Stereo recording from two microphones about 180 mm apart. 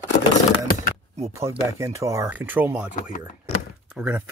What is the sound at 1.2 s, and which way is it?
Speech, 15° right (ahead or behind).